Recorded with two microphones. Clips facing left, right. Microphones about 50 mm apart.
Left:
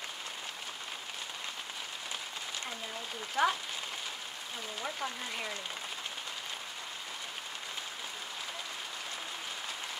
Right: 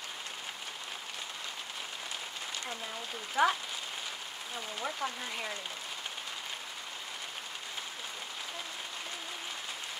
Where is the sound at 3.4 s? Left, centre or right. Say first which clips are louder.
Right 2 dB; centre.